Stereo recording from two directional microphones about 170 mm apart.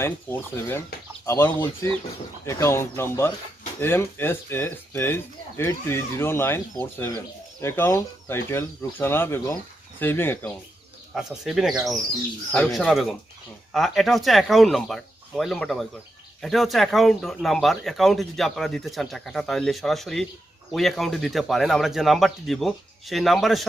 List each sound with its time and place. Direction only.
0.0 s speech: 15° left (ahead or behind)
11.1 s speech: 5° right (ahead or behind)